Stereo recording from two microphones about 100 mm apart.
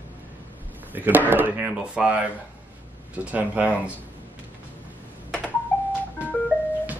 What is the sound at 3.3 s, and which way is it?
Speech, 15° right (ahead or behind).